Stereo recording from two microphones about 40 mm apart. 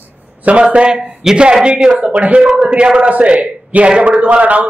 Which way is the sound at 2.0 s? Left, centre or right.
Right.